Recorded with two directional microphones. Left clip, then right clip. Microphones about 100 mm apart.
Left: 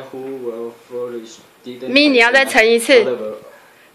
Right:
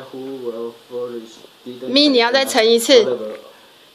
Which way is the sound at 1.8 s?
10° right (ahead or behind).